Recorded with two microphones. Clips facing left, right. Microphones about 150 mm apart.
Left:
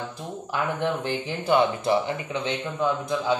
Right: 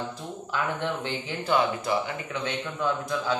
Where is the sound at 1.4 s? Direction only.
25° left (ahead or behind).